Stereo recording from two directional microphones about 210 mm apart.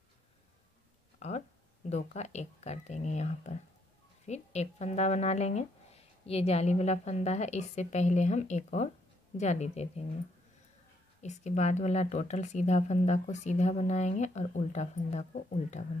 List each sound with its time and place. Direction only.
1.2 s a woman's voice: 30° left (ahead or behind)
11.1 s a woman's voice: 35° left (ahead or behind)